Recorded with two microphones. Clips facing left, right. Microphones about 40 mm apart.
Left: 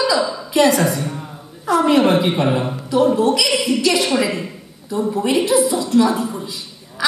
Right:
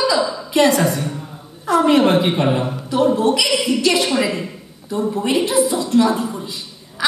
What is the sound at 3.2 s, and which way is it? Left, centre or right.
Speech, right.